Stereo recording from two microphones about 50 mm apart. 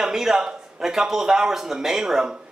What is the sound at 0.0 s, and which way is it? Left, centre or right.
Speech, centre.